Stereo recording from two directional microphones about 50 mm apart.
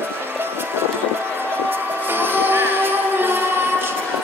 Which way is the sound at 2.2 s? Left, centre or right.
Right.